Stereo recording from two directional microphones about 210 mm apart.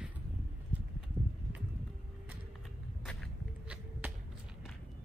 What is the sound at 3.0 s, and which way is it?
Walk, 5° left (ahead or behind).